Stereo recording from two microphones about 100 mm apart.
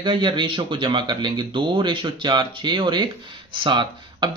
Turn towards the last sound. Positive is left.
turn(degrees=-50)  # may be behind; listen again after turning